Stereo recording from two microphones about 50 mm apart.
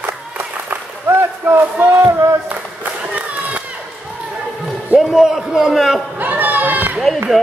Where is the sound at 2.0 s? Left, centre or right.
Right.